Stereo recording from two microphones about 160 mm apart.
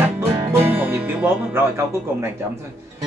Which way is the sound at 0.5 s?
15° right (ahead or behind).